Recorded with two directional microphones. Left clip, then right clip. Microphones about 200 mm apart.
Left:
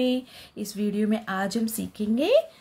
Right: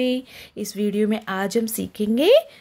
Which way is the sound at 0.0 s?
35° right (ahead or behind).